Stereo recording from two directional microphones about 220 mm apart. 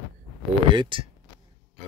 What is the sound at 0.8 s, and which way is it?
Speech, 20° right (ahead or behind).